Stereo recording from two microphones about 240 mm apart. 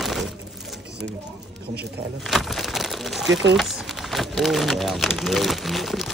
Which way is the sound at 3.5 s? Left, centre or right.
Centre.